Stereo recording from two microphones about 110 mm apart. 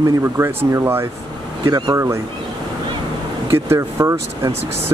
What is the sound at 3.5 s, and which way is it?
Speech, 25° right (ahead or behind).